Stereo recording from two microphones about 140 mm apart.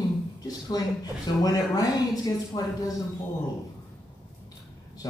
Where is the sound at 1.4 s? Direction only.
25° left (ahead or behind).